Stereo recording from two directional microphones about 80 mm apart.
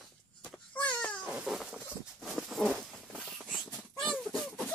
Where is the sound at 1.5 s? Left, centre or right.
Centre.